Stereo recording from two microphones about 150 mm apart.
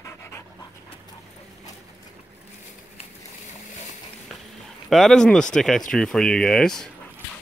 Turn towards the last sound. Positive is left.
turn(degrees=5)  # may be behind; listen again after turning